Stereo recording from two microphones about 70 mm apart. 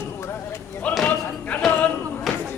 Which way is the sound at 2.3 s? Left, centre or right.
Centre.